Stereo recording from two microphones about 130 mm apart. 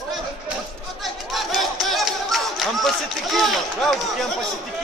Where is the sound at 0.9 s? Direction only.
Centre (ahead or behind).